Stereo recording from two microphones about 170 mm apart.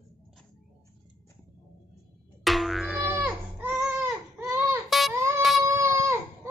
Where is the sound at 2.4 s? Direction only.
Centre (ahead or behind).